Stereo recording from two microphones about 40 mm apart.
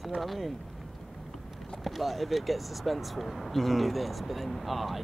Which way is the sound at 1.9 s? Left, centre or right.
Centre.